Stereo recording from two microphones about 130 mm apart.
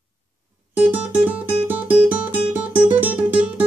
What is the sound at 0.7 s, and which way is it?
Music, 10° right (ahead or behind).